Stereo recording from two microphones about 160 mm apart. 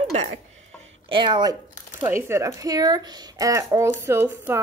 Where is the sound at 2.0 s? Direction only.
15° right (ahead or behind).